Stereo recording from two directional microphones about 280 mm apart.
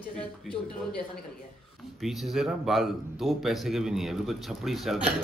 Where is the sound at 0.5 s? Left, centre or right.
Centre.